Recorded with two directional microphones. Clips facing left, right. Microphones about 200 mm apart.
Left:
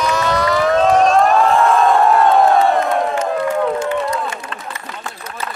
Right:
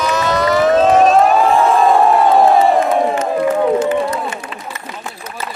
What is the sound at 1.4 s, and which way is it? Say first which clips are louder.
Crowd: right 1 dB; centre (ahead or behind).